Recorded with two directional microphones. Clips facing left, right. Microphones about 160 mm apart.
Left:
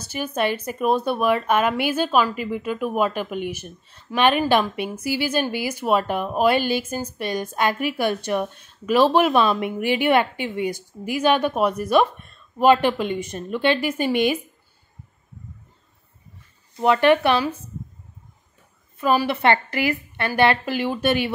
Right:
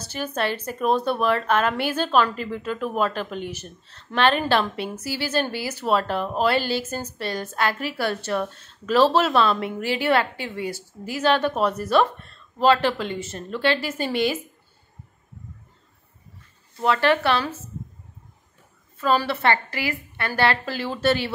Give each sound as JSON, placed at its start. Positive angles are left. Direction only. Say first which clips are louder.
{"t": 0.0, "sound": "speech", "louder": "left 3 dB", "side_deg": 10}
{"t": 16.7, "sound": "speech", "louder": "left 4 dB", "side_deg": 20}
{"t": 18.9, "sound": "speech", "louder": "left 2 dB", "side_deg": 15}